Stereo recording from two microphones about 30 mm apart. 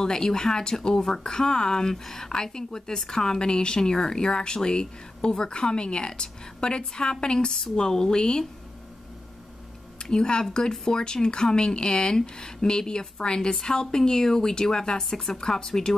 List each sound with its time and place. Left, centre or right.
0.0 s a woman's voice: left
3.3 s a woman's voice: left
10.0 s a woman's voice: left
10.7 s speech: centre
11.0 s a woman's voice: left